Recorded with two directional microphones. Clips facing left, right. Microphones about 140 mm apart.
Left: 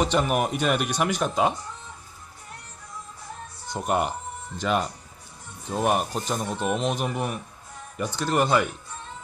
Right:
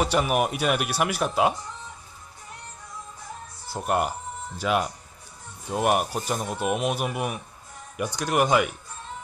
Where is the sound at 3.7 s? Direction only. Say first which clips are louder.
Even; centre (ahead or behind).